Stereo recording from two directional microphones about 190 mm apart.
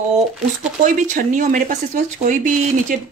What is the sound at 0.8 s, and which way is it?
Speech, 40° right (ahead or behind).